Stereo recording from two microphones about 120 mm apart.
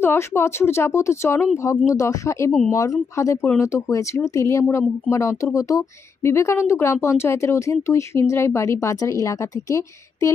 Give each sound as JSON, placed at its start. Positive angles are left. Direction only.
{"t": 0.0, "sound": "speech", "side_deg": 20}